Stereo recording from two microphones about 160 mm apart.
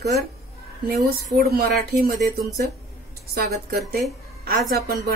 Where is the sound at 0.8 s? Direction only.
75° right (ahead or behind).